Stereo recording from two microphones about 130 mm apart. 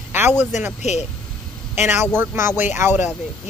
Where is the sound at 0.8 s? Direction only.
60° left (ahead or behind).